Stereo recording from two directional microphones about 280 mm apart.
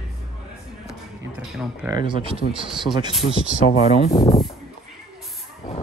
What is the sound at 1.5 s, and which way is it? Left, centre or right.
Speech, centre.